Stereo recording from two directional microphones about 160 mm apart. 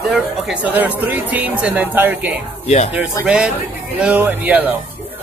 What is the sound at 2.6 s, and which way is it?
Speech, 45° left (ahead or behind).